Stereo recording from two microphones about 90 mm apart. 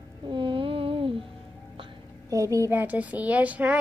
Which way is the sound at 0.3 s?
65° right (ahead or behind).